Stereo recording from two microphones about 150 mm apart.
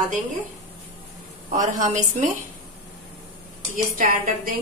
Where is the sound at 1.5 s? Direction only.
55° right (ahead or behind).